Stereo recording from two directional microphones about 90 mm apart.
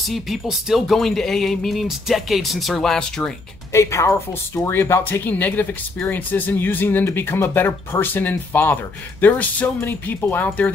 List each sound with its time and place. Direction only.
0.0 s speech: centre (ahead or behind)
3.7 s speech: 30° left (ahead or behind)